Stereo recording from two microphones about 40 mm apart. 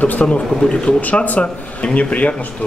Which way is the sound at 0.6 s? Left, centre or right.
Left.